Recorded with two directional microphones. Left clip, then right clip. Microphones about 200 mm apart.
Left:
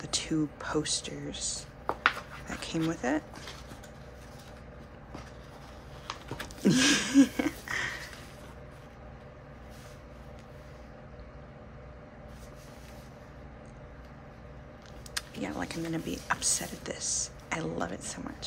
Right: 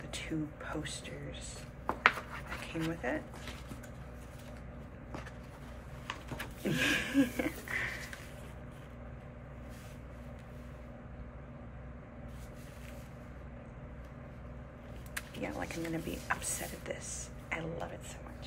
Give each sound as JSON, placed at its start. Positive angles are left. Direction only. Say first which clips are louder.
{"t": 0.1, "sound": "speech", "louder": "left 9 dB", "side_deg": 20}
{"t": 2.6, "sound": "speech", "louder": "left 6 dB", "side_deg": 20}
{"t": 6.0, "sound": "a sound", "louder": "left 3 dB", "side_deg": 15}
{"t": 15.1, "sound": "speech", "louder": "left 4 dB", "side_deg": 10}